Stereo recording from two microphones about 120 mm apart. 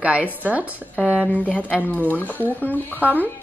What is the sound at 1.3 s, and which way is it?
Speech, 10° left (ahead or behind).